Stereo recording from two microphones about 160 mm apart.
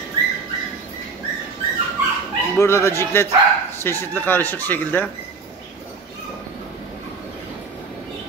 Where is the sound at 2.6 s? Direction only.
15° left (ahead or behind).